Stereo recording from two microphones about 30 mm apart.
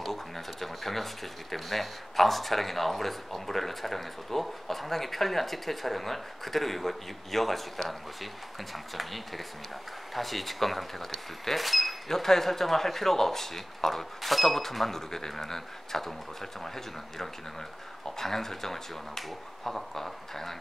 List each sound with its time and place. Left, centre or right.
0.0 s speech: centre
12.1 s speech: centre